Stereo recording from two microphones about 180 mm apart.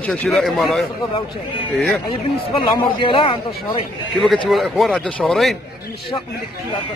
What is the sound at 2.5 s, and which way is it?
Speech, 30° left (ahead or behind).